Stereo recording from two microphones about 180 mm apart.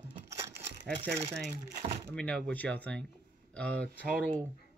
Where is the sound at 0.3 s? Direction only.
15° right (ahead or behind).